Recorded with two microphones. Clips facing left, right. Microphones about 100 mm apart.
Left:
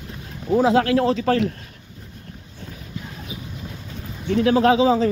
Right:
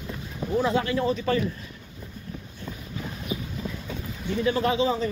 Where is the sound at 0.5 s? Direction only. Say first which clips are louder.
Left 7 dB; 90° left.